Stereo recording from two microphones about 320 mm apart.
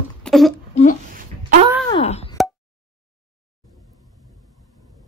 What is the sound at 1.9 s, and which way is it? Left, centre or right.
Plop, centre.